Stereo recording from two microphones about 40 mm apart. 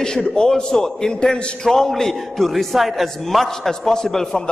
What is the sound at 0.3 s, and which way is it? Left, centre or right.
A man's voice, centre.